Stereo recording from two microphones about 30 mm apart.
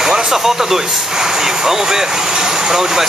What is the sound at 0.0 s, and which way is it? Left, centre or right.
Speech, centre.